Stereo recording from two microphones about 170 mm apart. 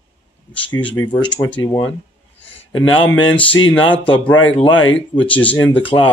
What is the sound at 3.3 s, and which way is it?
Speech, 10° left (ahead or behind).